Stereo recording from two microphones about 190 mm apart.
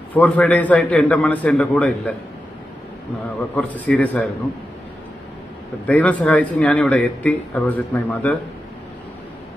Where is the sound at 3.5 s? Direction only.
5° left (ahead or behind).